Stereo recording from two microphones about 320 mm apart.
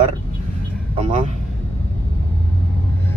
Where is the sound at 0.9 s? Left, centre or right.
Right.